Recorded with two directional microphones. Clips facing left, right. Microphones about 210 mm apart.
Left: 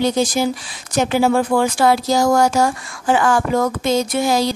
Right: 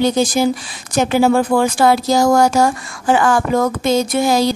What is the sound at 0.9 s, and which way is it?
Speech, 50° right (ahead or behind).